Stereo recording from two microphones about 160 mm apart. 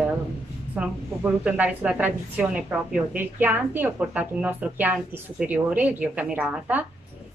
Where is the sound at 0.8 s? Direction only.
10° right (ahead or behind).